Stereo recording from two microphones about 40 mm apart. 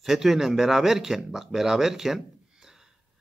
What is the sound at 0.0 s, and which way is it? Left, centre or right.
Speech, centre.